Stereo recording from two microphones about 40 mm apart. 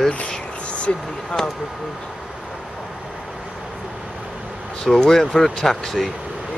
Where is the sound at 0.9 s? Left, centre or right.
Left.